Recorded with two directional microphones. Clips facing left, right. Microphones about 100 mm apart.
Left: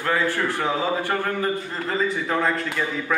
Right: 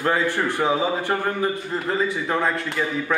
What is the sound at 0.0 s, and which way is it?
A man's voice, 20° right (ahead or behind).